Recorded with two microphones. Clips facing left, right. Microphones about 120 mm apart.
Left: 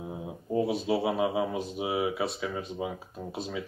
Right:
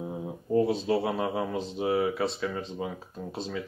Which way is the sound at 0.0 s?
5° left (ahead or behind).